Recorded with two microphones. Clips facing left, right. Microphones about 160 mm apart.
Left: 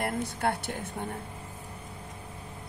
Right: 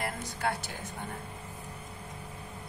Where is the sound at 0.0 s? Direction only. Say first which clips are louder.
Left 4 dB; 55° left (ahead or behind).